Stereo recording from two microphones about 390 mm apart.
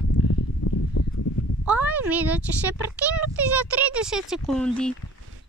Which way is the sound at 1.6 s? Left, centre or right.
Centre.